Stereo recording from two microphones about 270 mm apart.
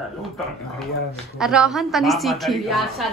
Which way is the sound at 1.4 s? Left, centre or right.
Centre.